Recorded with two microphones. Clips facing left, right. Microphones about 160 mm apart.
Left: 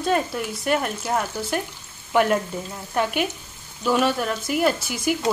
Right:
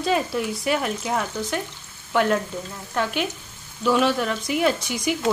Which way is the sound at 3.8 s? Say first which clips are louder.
Right 1 dB; centre (ahead or behind).